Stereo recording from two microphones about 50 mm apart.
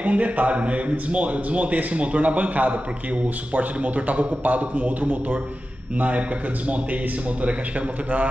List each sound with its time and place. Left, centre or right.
0.0 s a man's voice: right